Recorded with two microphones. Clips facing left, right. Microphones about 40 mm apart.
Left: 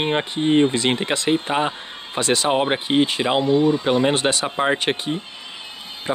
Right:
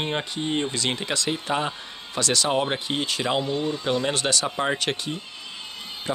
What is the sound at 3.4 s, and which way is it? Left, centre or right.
Speech, centre.